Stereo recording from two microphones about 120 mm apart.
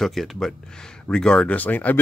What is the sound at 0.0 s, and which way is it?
Speech, centre (ahead or behind).